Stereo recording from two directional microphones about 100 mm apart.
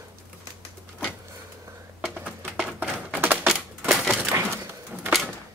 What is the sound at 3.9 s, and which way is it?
Typewriter, centre (ahead or behind).